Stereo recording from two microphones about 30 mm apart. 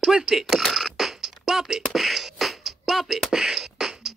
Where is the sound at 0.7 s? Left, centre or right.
Centre.